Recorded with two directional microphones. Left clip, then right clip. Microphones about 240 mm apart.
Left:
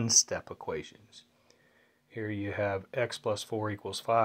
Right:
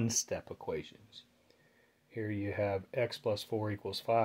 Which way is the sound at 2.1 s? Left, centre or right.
Centre.